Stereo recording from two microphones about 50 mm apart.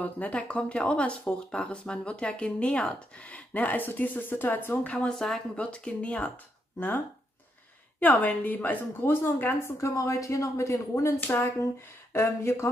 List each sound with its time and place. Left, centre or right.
0.0 s speech: left
5.1 s speech: centre
5.6 s speech: left
8.0 s a woman's voice: left
9.8 s speech: left
11.1 s speech: left
12.1 s speech: left